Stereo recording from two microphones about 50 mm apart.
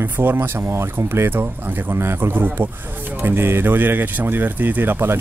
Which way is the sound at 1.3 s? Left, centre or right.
Right.